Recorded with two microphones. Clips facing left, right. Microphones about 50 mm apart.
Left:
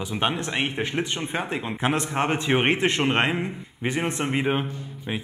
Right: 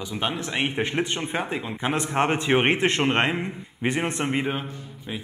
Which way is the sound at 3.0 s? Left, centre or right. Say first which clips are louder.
Even; centre.